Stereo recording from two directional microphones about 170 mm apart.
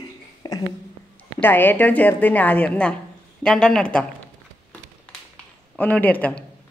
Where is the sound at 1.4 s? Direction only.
10° left (ahead or behind).